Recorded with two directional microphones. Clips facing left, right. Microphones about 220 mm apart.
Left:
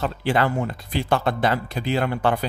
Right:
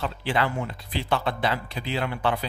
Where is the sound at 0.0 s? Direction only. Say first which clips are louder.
Left 4 dB; 45° left (ahead or behind).